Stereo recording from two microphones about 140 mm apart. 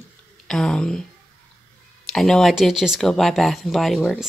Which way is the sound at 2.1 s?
5° left (ahead or behind).